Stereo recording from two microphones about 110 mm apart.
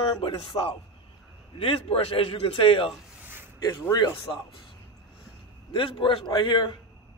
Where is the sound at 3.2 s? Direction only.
20° right (ahead or behind).